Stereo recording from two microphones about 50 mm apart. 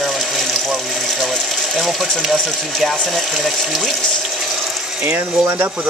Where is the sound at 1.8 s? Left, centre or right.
Centre.